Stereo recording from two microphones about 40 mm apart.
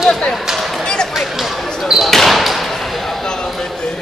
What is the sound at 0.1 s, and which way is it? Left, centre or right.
Speech, centre.